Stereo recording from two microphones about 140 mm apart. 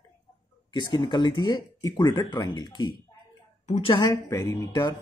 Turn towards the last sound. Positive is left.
turn(degrees=25)  # may be behind; listen again after turning